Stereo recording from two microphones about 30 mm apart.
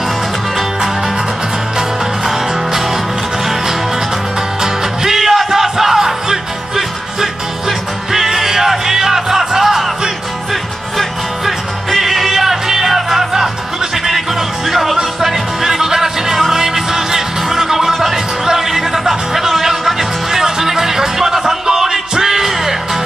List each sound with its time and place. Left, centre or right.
2.2 s music: centre
4.6 s music: centre
5.2 s battle cry: centre
5.5 s music: centre
8.1 s music: centre
10.5 s music: centre
14.7 s music: centre
20.2 s music: centre